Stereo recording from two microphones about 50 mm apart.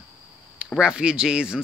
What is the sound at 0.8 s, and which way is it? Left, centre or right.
Speech, centre.